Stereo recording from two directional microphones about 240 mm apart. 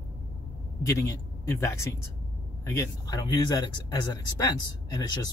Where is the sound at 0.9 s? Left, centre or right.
Centre.